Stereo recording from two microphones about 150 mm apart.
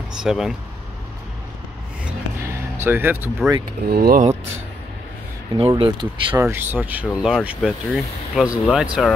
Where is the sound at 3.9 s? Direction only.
90° right.